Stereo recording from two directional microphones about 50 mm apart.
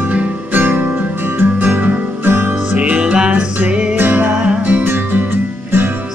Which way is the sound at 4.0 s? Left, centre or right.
Right.